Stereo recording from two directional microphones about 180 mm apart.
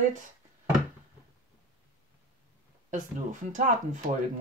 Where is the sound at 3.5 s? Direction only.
45° right (ahead or behind).